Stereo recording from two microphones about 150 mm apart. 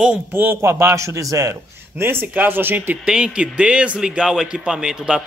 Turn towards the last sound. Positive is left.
turn(degrees=-5)  # may be behind; listen again after turning